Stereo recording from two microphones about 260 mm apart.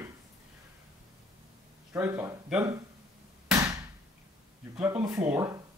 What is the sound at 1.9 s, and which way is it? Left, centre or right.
Speech, centre.